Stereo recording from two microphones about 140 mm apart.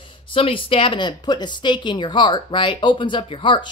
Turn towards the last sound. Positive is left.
turn(degrees=35)  # may be behind; listen again after turning